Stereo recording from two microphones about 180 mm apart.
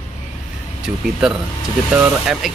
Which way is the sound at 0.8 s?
5° right (ahead or behind).